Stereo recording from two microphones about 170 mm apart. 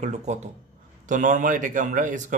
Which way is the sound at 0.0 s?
40° right (ahead or behind).